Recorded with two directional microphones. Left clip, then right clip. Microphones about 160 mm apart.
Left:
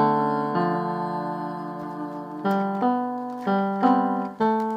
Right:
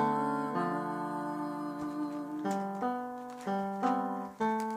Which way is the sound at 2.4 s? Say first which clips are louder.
Left 11 dB; 30° left (ahead or behind).